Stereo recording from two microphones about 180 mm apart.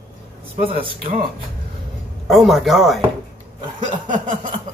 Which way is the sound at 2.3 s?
Centre (ahead or behind).